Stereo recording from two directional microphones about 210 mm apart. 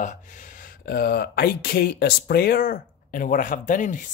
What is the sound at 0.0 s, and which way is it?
Speech, 35° left (ahead or behind).